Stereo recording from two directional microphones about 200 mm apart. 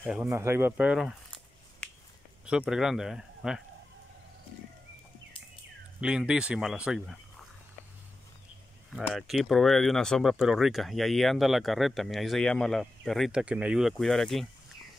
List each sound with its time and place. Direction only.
0.1 s speech: 10° right (ahead or behind)
2.4 s speech: 5° right (ahead or behind)
5.9 s speech: 5° right (ahead or behind)
8.9 s speech: centre (ahead or behind)